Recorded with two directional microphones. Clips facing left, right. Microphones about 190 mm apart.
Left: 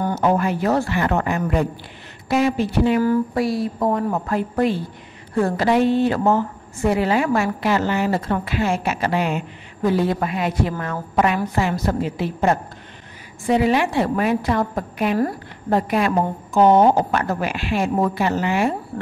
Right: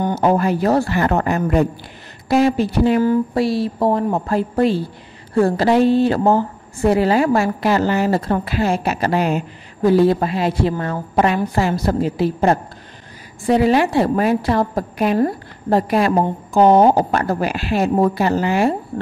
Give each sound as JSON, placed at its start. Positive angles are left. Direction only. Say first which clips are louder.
{"t": 0.0, "sound": "a woman's voice", "louder": "right 3 dB", "side_deg": -30}
{"t": 3.0, "sound": "a woman's voice", "louder": "right 2 dB", "side_deg": -25}